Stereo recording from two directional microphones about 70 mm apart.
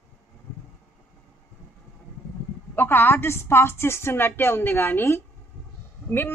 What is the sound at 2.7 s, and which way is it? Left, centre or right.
A woman's voice, left.